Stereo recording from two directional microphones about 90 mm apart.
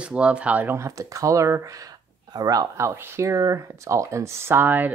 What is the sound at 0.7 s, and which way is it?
Speech, 35° right (ahead or behind).